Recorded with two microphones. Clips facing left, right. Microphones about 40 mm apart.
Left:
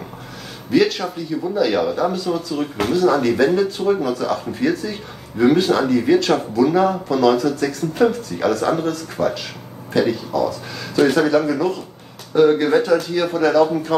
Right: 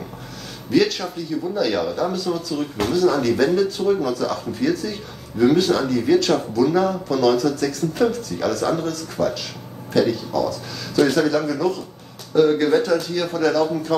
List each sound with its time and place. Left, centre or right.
0.7 s speech: centre